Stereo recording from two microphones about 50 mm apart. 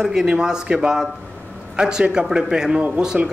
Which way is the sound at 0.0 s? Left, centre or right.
Centre.